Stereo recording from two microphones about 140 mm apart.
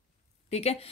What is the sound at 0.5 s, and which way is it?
Speech, 50° left (ahead or behind).